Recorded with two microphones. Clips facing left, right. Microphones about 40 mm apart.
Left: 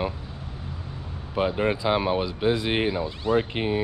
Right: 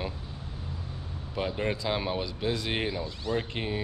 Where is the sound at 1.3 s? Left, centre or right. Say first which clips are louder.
Left 7 dB; left.